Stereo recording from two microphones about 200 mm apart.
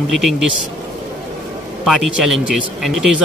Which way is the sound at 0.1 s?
Centre (ahead or behind).